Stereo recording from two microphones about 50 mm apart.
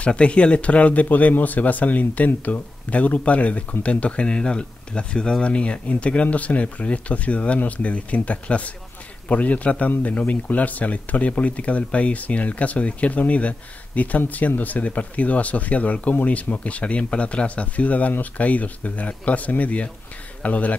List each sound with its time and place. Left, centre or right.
0.0 s speech: left
1.0 s speech: left